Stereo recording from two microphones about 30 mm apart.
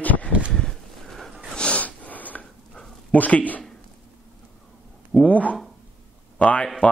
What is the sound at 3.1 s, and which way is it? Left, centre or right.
Speech, left.